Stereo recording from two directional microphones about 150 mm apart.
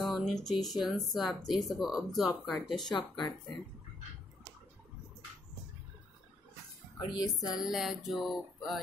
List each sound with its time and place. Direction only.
0.0 s speech: centre (ahead or behind)
2.9 s speech: 30° left (ahead or behind)
7.1 s speech: 30° left (ahead or behind)
7.6 s speech: centre (ahead or behind)